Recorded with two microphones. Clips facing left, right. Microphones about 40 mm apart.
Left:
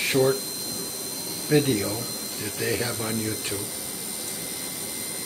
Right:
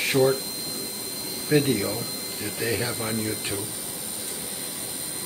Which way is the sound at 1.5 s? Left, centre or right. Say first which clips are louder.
Even; centre.